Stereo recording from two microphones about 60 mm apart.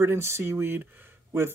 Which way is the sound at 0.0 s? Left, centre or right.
Right.